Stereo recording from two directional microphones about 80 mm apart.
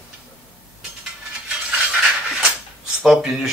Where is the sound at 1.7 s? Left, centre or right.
Centre.